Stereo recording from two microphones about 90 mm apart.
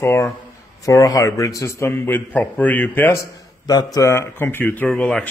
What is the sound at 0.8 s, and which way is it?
A man's voice, 40° left (ahead or behind).